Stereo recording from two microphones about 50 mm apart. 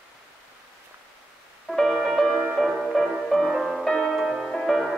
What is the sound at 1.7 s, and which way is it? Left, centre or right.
Music, centre.